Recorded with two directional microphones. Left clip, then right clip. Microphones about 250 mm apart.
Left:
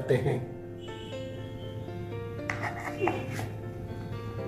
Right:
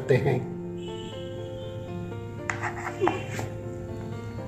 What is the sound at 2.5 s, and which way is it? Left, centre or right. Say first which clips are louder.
Music: right 4 dB; centre.